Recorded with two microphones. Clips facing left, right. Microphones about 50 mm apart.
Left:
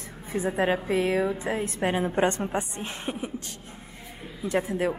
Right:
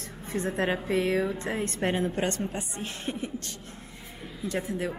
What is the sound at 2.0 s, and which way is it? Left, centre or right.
Speech, left.